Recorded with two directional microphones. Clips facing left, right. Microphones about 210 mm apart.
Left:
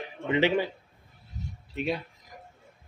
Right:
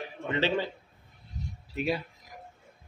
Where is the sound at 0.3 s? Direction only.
15° left (ahead or behind).